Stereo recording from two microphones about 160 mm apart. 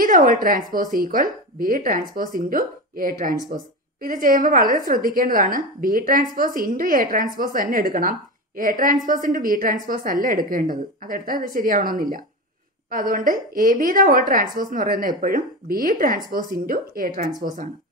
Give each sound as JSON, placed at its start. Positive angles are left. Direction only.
{"t": 0.0, "sound": "a woman's voice", "side_deg": -55}
{"t": 12.9, "sound": "a woman's voice", "side_deg": -60}